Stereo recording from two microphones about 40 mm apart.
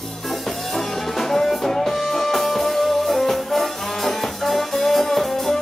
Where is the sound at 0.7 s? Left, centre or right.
Centre.